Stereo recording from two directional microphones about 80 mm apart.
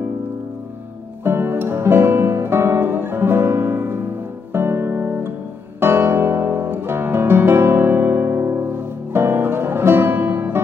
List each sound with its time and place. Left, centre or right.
1.2 s music: right